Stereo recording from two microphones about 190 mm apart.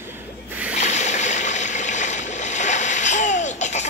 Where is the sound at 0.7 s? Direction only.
35° left (ahead or behind).